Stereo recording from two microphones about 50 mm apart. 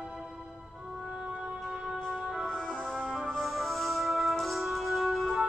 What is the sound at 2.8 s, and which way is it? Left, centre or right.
Music, centre.